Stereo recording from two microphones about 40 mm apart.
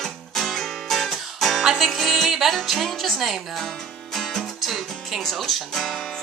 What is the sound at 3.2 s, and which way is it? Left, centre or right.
Music, centre.